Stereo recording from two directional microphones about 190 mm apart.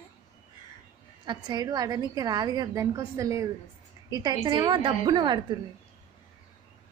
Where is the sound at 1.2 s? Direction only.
25° right (ahead or behind).